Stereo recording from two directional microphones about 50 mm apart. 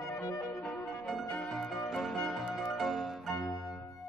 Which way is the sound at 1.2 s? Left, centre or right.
Centre.